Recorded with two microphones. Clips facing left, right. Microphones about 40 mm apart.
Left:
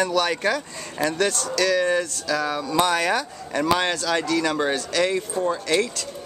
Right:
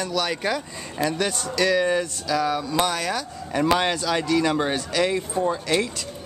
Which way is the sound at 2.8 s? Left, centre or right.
Centre.